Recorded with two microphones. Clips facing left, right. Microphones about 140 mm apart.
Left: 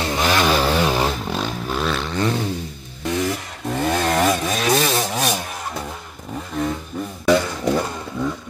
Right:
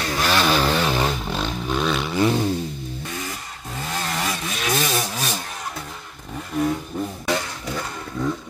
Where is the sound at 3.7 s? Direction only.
65° left (ahead or behind).